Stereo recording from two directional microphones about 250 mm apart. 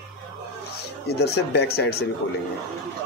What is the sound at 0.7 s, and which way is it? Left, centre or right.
Speech, left.